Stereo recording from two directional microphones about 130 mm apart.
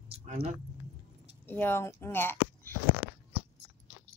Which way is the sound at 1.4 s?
15° left (ahead or behind).